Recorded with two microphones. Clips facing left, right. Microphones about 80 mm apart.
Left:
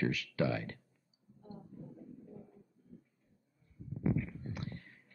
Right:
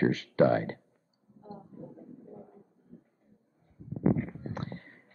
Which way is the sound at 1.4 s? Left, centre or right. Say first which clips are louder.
Right 5 dB; right.